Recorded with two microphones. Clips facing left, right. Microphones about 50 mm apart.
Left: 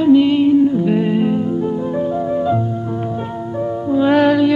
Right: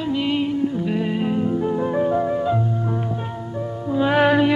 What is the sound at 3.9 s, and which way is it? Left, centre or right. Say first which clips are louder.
Music: left 5 dB; centre.